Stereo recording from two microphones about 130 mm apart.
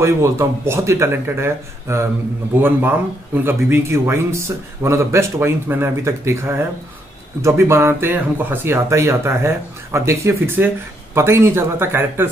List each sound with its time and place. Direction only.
0.0 s speech: 20° right (ahead or behind)